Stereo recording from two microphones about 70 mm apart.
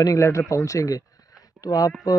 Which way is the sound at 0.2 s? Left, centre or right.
Left.